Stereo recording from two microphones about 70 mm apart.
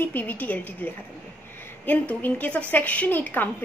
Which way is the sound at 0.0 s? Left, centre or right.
Left.